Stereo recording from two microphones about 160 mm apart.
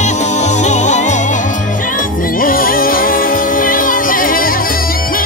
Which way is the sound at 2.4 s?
65° left (ahead or behind).